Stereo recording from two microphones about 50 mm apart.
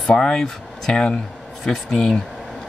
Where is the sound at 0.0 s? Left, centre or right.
Centre.